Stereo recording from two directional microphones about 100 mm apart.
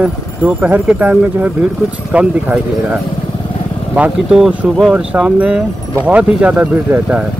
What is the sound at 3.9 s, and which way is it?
Speech, 15° right (ahead or behind).